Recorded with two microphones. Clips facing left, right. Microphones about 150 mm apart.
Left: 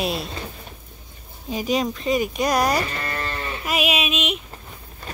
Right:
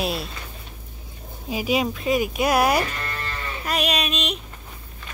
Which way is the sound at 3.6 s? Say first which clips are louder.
Left 1 dB; 5° left (ahead or behind).